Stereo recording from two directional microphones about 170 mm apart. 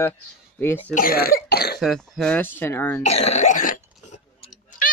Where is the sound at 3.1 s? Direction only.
40° left (ahead or behind).